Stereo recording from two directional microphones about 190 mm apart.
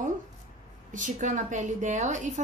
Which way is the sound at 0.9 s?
40° right (ahead or behind).